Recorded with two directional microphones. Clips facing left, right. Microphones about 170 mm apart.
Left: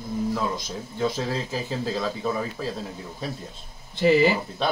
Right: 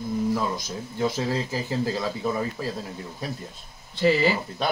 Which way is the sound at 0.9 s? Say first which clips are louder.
Right 1 dB; 10° right (ahead or behind).